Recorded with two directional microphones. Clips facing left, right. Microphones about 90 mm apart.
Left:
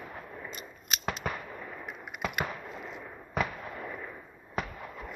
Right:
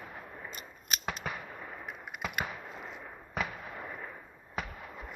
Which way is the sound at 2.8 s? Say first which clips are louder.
Left 3 dB; 30° right (ahead or behind).